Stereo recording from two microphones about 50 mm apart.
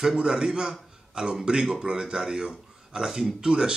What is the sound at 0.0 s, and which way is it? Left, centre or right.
Speech, centre.